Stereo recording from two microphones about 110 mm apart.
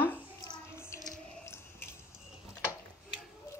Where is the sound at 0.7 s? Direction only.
25° left (ahead or behind).